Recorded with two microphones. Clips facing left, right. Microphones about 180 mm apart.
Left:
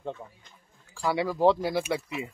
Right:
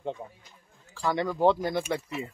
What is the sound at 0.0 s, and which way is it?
Speech, 15° right (ahead or behind).